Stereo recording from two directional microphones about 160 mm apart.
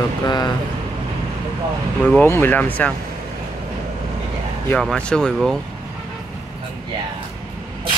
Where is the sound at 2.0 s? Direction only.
10° left (ahead or behind).